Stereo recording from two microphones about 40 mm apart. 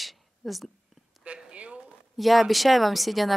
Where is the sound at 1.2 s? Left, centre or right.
Right.